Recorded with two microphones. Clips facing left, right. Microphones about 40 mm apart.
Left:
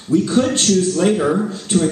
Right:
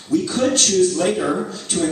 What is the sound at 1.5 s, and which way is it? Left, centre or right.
Speech, left.